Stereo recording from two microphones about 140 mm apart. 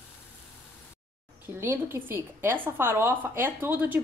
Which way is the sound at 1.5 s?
15° right (ahead or behind).